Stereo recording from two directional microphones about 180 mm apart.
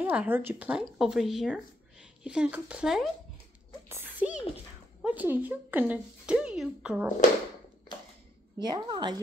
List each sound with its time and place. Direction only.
0.0 s speech: 10° right (ahead or behind)
4.2 s speech: 5° right (ahead or behind)
8.5 s a woman's voice: 25° right (ahead or behind)